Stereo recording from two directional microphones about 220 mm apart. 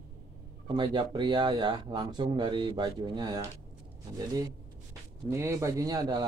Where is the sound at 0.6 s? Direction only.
20° right (ahead or behind).